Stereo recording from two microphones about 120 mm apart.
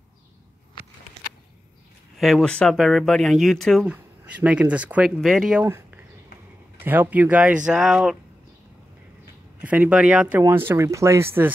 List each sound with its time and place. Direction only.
2.1 s speech: centre (ahead or behind)
3.8 s speech: 10° right (ahead or behind)
5.6 s a sound: 15° right (ahead or behind)
6.8 s speech: 15° right (ahead or behind)
9.6 s speech: 10° right (ahead or behind)